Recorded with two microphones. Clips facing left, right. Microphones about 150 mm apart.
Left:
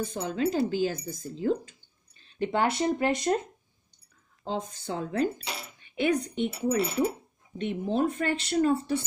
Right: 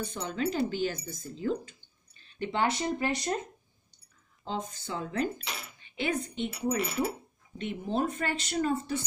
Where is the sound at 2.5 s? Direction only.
55° left (ahead or behind).